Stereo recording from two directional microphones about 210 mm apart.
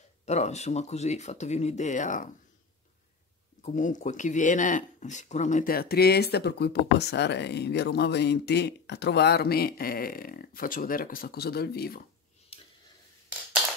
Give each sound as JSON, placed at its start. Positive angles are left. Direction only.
{"t": 0.2, "sound": "speech", "side_deg": 30}
{"t": 3.6, "sound": "speech", "side_deg": 35}